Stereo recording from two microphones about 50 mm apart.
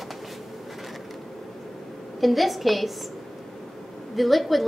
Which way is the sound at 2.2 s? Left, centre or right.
Centre.